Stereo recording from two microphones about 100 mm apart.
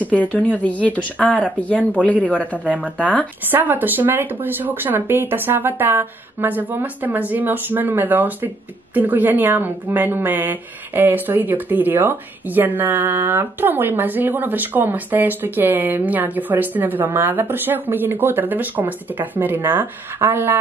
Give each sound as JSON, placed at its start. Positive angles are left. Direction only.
{"t": 0.0, "sound": "speech", "side_deg": 15}
{"t": 3.4, "sound": "a woman's voice", "side_deg": -20}